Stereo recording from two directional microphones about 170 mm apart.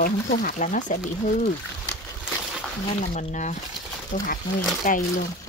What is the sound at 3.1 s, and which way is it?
Speech, 45° left (ahead or behind).